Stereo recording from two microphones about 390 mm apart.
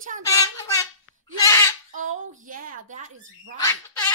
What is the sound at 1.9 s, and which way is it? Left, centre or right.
A woman's voice, centre.